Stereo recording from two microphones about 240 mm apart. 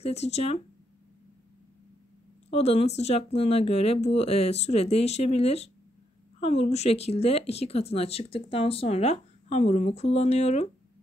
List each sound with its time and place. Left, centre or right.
0.0 s speech: left
2.5 s speech: left